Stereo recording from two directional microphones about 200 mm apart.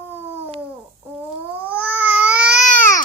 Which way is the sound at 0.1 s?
10° right (ahead or behind).